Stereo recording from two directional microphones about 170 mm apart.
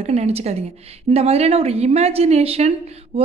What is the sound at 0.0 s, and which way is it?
A woman's voice, 40° right (ahead or behind).